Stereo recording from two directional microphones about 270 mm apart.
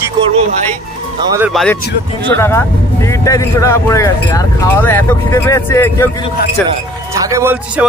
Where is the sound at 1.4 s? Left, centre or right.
Centre.